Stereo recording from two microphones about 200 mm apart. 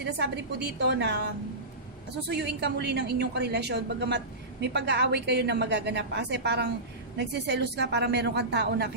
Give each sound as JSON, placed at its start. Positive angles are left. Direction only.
{"t": 0.0, "sound": "a woman's voice", "side_deg": -55}